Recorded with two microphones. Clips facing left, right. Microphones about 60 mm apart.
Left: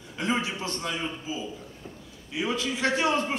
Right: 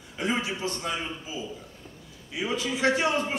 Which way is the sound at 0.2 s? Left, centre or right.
Right.